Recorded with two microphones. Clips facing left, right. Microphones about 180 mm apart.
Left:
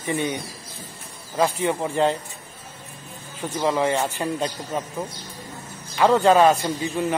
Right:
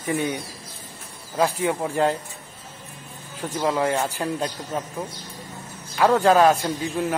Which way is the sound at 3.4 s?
Centre (ahead or behind).